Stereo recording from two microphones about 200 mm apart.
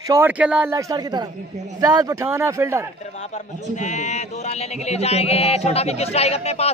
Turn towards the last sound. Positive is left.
turn(degrees=30)  # may be behind; listen again after turning